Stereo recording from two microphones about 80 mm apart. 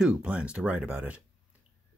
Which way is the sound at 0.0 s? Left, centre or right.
Centre.